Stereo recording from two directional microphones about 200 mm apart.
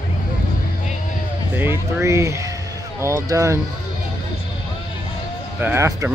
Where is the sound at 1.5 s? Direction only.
10° right (ahead or behind).